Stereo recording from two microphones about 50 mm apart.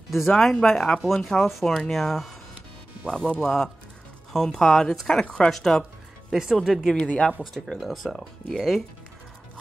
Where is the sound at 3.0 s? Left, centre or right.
Centre.